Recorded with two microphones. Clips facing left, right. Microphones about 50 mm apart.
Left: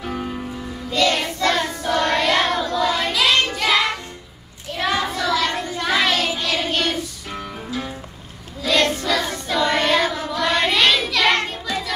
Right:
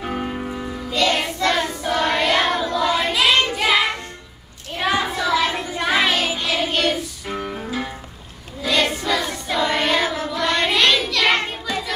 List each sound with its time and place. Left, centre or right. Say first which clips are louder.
0.0 s music: right 2 dB; right
0.8 s child singing: left 1 dB; centre
6.3 s music: right 1 dB; centre
7.2 s music: right 4 dB; right
8.6 s child singing: left 1 dB; centre